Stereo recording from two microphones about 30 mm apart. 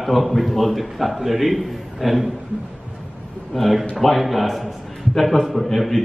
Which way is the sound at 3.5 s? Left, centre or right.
Centre.